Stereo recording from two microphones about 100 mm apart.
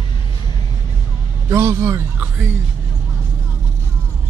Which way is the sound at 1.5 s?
30° right (ahead or behind).